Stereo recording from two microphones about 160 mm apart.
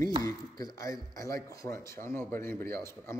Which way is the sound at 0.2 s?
20° left (ahead or behind).